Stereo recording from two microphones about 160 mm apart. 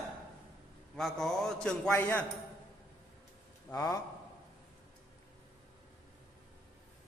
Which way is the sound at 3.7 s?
20° left (ahead or behind).